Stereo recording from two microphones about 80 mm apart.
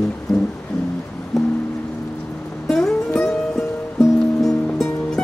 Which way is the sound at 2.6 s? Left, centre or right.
Centre.